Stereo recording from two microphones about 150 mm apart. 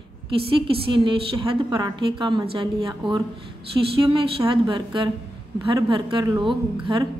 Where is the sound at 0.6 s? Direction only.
35° right (ahead or behind).